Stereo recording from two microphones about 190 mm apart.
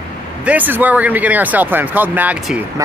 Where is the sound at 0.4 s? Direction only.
10° right (ahead or behind).